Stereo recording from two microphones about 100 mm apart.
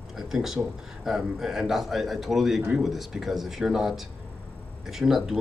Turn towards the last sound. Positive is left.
turn(degrees=-5)  # may be behind; listen again after turning